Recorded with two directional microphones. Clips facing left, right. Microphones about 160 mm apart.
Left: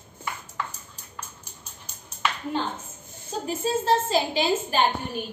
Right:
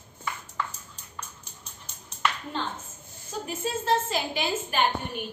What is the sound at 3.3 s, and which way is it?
A woman's voice, 30° left (ahead or behind).